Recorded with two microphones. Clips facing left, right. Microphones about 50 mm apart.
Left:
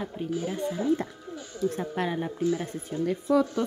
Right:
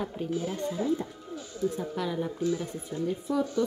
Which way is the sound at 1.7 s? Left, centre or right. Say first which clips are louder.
Left 2 dB; left.